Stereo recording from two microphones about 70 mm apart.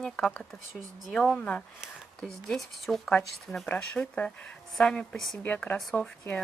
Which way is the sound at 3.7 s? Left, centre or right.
Centre.